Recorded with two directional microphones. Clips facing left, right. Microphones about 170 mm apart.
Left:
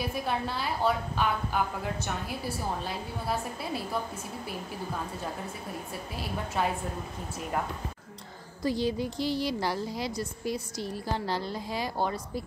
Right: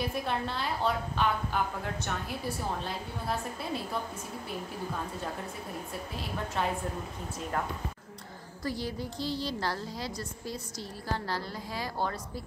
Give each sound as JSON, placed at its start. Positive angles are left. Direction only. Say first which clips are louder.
{"t": 0.1, "sound": "a woman's voice", "louder": "left 1 dB", "side_deg": 5}
{"t": 6.6, "sound": "a woman's voice", "louder": "left 2 dB", "side_deg": 5}
{"t": 8.6, "sound": "a woman's voice", "louder": "left 6 dB", "side_deg": 15}